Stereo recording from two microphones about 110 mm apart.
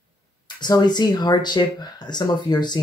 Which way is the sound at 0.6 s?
40° left (ahead or behind).